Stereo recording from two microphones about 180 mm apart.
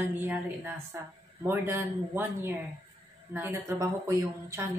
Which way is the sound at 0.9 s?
15° right (ahead or behind).